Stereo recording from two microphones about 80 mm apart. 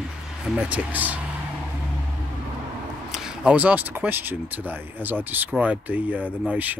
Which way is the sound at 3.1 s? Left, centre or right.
Centre.